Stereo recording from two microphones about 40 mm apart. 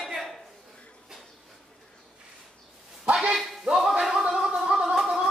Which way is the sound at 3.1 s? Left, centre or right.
Right.